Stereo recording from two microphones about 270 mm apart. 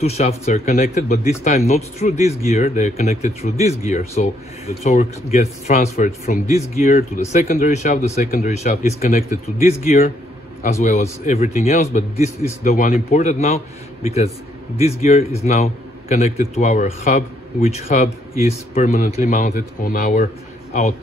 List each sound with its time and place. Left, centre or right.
0.0 s a man's voice: left